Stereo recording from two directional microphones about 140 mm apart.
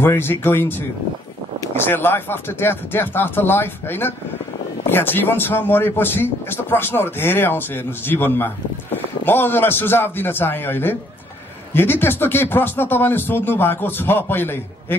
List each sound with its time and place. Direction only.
0.0 s a man's voice: 15° left (ahead or behind)